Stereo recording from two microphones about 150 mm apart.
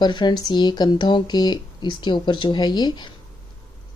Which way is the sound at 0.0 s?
30° left (ahead or behind).